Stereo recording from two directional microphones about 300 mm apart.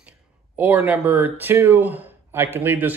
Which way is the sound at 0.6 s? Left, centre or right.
Centre.